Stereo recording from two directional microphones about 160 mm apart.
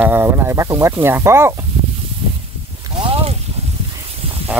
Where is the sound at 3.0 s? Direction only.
40° right (ahead or behind).